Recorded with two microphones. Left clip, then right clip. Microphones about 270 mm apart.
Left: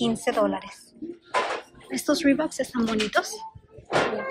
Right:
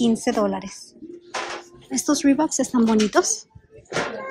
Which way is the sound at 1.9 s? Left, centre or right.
Centre.